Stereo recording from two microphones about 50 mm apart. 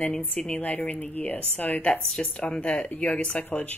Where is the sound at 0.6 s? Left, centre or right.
Left.